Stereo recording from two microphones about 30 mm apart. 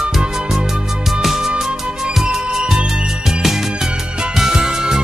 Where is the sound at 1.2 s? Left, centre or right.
Centre.